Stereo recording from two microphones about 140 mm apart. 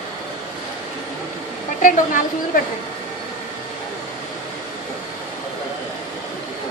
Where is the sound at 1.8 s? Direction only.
65° left (ahead or behind).